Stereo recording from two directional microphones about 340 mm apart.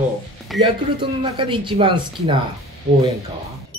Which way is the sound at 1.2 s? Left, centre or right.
Centre.